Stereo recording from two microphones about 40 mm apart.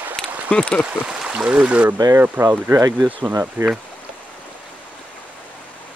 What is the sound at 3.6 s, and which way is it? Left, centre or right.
Speech, right.